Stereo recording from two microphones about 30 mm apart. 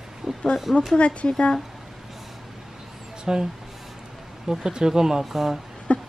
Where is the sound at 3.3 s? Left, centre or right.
Right.